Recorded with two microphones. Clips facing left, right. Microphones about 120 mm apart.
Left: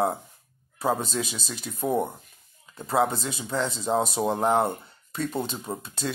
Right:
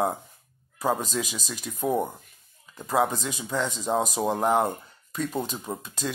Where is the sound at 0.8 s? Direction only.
Centre (ahead or behind).